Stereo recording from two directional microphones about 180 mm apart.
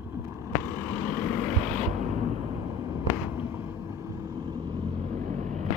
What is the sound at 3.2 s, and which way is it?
Vehicle, 10° right (ahead or behind).